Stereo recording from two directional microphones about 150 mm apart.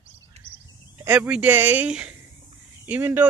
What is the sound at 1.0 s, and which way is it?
A man's voice, 10° right (ahead or behind).